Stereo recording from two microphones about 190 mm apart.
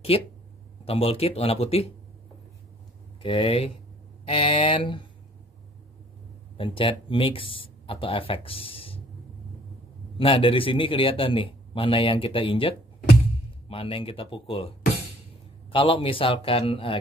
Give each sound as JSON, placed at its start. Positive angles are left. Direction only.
{"t": 0.1, "sound": "speech", "side_deg": 30}
{"t": 3.2, "sound": "a man's voice", "side_deg": 30}
{"t": 6.5, "sound": "speech", "side_deg": 30}
{"t": 10.1, "sound": "a man's voice", "side_deg": 30}
{"t": 15.7, "sound": "a man's voice", "side_deg": 25}